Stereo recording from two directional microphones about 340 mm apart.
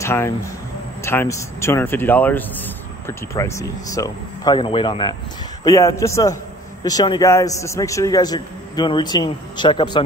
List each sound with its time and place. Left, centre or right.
0.0 s speech: centre